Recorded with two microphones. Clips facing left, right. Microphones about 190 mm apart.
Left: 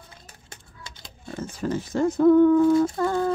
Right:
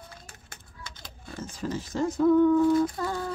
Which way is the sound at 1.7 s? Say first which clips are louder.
Left 5 dB; 55° left (ahead or behind).